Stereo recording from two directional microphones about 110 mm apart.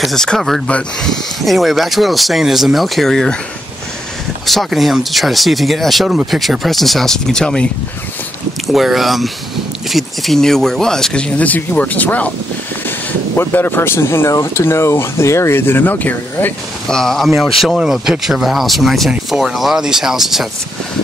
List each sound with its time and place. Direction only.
0.0 s speech: 5° left (ahead or behind)
4.5 s speech: centre (ahead or behind)
8.7 s speech: centre (ahead or behind); by 12.3 s 15° left (ahead or behind)
13.4 s speech: 20° left (ahead or behind)
16.8 s speech: 5° left (ahead or behind)